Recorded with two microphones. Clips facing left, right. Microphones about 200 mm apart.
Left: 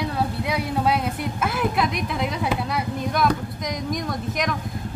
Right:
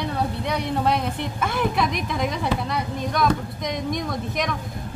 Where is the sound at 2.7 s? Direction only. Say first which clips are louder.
Left 1 dB; 5° left (ahead or behind).